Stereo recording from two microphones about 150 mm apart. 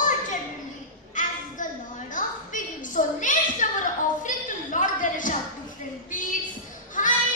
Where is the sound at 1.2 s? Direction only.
55° left (ahead or behind).